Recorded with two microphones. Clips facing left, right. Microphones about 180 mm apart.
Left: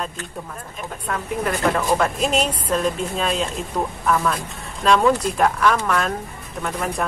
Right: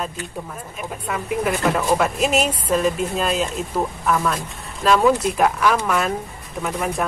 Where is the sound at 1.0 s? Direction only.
5° right (ahead or behind).